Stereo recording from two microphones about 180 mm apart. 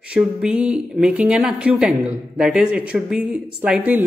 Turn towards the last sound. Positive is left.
turn(degrees=-10)  # may be behind; listen again after turning